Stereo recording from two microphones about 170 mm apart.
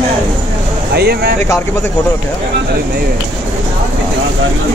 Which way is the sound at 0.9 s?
70° right (ahead or behind).